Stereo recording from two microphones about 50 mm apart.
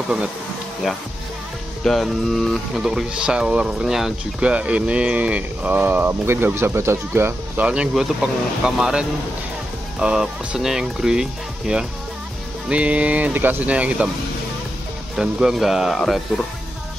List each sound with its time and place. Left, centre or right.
1.9 s speech: centre
2.8 s speech: centre
4.4 s speech: right
7.5 s speech: right
7.9 s speech: centre
13.3 s speech: right
13.7 s speech: right
15.1 s speech: centre